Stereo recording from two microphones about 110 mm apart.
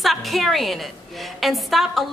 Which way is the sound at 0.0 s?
Centre (ahead or behind).